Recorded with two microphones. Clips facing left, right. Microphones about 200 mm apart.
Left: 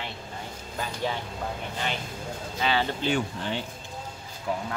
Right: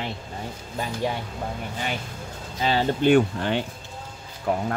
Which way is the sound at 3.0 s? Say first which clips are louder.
Right 9 dB; 60° right (ahead or behind).